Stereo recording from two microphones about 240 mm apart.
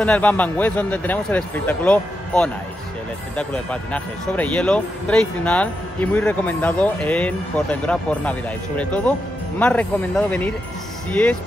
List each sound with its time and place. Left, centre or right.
0.0 s a man's voice: centre